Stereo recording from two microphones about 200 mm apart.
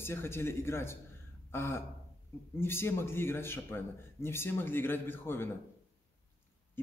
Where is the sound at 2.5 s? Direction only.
10° left (ahead or behind).